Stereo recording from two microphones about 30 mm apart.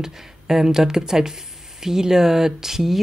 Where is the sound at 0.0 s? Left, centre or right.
Centre.